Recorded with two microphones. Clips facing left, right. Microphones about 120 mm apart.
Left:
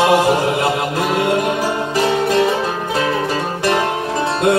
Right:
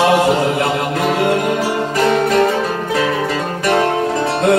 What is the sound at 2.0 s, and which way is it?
Music, 55° right (ahead or behind).